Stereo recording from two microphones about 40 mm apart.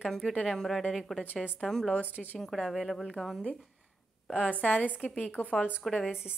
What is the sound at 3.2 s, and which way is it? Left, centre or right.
Speech, left.